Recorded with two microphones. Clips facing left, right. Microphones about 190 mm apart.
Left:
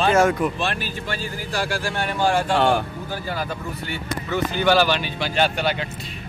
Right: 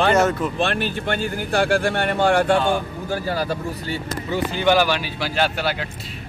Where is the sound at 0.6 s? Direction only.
60° right (ahead or behind).